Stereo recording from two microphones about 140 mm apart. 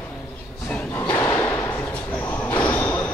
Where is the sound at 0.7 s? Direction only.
10° left (ahead or behind).